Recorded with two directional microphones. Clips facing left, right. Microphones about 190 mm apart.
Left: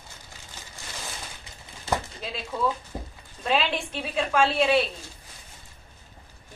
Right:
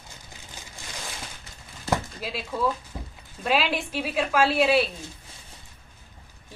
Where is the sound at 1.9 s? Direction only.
5° right (ahead or behind).